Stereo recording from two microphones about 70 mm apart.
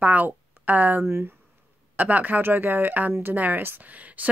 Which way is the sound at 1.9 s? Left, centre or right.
Right.